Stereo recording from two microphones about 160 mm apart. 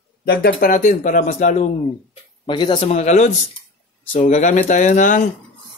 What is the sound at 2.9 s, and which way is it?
Speech, 45° left (ahead or behind).